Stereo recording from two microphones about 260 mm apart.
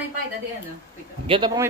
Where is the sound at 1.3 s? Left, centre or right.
Centre.